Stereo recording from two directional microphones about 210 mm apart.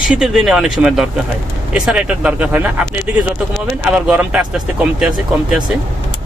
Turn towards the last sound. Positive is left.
turn(degrees=-5)  # may be behind; listen again after turning